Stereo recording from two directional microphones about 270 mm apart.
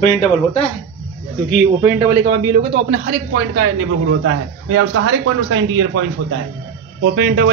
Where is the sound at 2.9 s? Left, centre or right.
Right.